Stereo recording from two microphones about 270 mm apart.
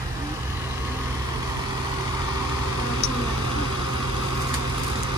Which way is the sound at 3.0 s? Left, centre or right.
Right.